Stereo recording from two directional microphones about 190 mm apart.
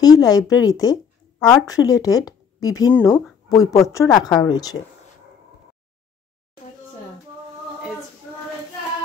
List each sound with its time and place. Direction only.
0.0 s speech: 20° left (ahead or behind)